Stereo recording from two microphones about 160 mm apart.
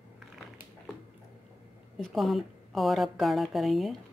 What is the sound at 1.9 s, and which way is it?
A woman's voice, centre (ahead or behind).